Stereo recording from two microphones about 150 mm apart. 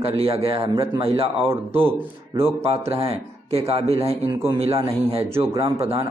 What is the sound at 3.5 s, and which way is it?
A man's voice, 40° right (ahead or behind).